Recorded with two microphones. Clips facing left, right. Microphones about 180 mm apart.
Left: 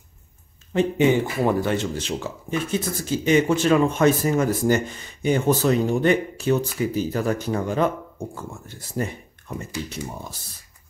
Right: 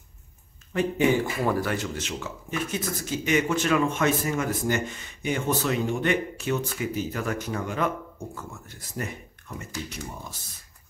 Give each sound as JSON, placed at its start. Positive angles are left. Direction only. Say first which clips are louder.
{"t": 0.7, "sound": "speech", "louder": "left 4 dB", "side_deg": 20}